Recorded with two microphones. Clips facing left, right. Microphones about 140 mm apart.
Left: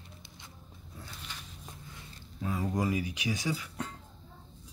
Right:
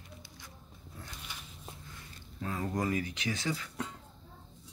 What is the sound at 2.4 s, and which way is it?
Speech, 10° left (ahead or behind).